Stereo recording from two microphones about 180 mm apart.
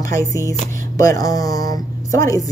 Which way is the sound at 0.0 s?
20° left (ahead or behind).